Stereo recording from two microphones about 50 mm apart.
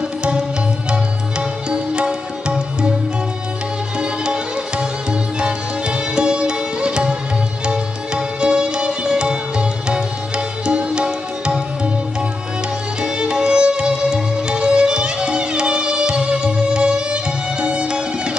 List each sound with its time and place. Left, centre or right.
0.2 s music: centre
1.7 s music: centre
4.0 s music: centre
13.0 s music: centre